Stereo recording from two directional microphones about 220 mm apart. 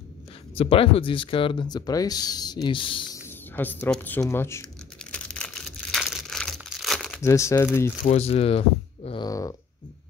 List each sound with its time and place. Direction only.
0.6 s speech: 25° left (ahead or behind)
5.1 s crumpling: 5° left (ahead or behind)
7.2 s speech: 15° left (ahead or behind)
8.0 s speech: 30° left (ahead or behind)